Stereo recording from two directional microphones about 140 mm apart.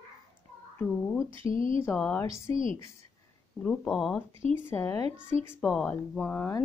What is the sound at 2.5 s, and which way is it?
Speech, 40° right (ahead or behind).